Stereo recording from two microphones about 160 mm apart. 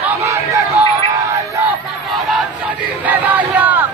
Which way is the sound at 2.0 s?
Centre (ahead or behind).